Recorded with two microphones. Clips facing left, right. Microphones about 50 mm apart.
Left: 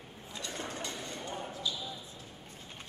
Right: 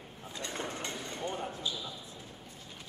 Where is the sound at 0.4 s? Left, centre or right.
Right.